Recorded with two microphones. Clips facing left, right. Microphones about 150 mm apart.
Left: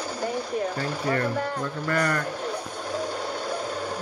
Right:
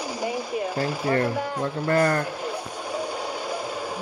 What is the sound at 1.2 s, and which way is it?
Speech, 10° right (ahead or behind).